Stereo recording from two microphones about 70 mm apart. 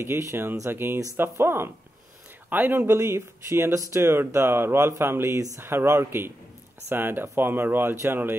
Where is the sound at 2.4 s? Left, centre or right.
Right.